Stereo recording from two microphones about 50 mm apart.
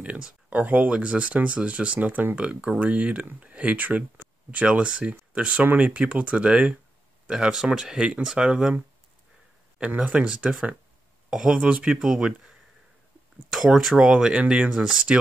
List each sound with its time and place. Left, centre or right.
0.0 s speech: right
7.2 s speech: centre
9.8 s speech: right
11.9 s speech: centre